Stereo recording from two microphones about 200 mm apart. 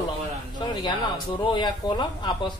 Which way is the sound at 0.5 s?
20° left (ahead or behind).